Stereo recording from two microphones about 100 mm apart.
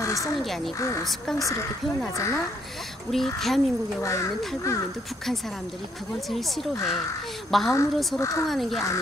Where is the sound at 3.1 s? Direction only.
Centre (ahead or behind).